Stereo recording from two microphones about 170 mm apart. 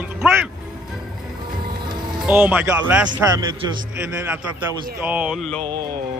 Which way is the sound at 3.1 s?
25° right (ahead or behind).